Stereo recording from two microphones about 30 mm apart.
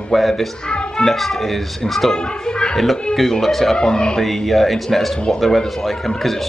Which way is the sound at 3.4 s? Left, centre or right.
Centre.